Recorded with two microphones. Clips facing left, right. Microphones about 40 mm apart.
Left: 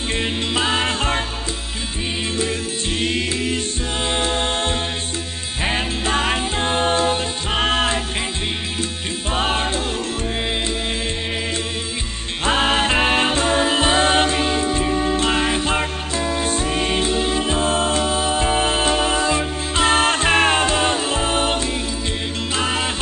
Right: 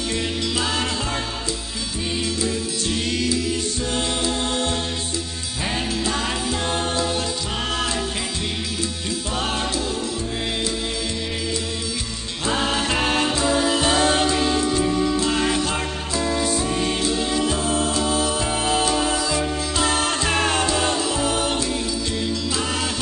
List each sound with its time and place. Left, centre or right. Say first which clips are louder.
0.1 s music: left 5 dB; left
2.2 s music: left 1 dB; left
9.3 s music: left 5 dB; left
12.4 s music: left 4 dB; left
15.4 s music: left 2 dB; left